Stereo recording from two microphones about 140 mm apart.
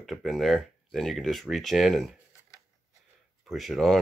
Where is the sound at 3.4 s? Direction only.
Centre (ahead or behind).